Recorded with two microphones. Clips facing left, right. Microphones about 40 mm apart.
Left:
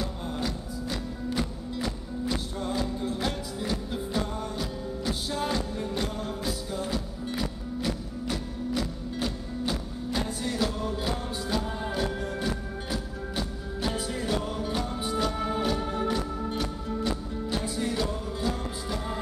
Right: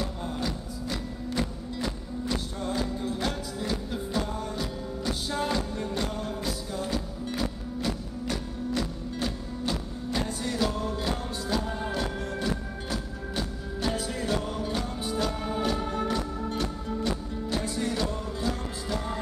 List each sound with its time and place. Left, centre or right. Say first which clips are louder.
0.8 s music: left 1 dB; centre